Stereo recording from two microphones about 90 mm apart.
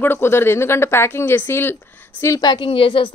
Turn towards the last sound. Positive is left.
turn(degrees=90)